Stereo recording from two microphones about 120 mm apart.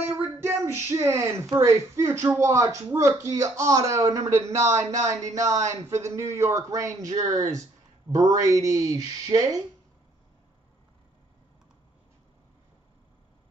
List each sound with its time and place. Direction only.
0.0 s speech: 20° right (ahead or behind)